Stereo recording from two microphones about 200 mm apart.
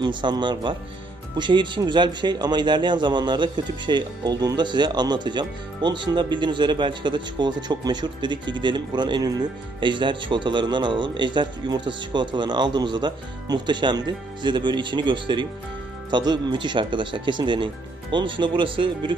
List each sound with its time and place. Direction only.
0.0 s speech: 25° right (ahead or behind)